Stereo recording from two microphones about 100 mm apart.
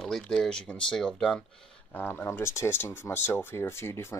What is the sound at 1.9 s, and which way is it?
Speech, 15° left (ahead or behind).